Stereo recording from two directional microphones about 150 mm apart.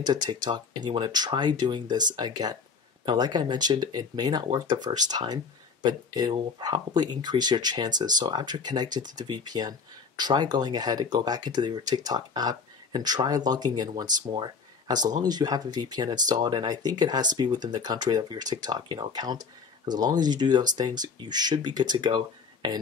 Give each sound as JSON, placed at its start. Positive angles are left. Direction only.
{"t": 0.0, "sound": "speech", "side_deg": -30}